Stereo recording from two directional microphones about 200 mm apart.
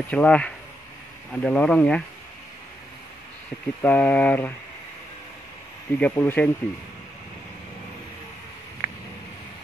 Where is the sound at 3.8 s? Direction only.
10° left (ahead or behind).